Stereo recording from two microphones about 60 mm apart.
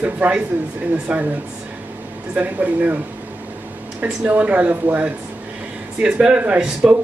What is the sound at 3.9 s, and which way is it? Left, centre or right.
A woman's voice, right.